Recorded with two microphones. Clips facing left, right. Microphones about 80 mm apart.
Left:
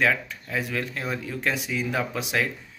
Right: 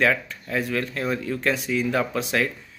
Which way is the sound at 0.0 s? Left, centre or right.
Centre.